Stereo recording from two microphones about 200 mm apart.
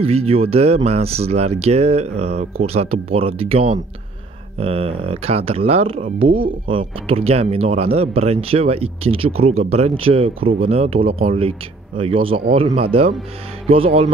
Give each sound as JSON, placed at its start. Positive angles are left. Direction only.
{"t": 0.0, "sound": "speech", "side_deg": -30}